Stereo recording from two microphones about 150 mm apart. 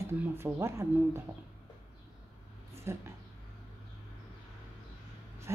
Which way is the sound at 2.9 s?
15° right (ahead or behind).